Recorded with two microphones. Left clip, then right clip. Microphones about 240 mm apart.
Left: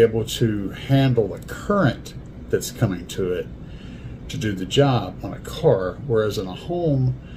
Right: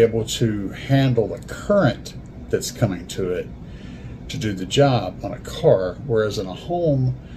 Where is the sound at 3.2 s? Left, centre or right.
Centre.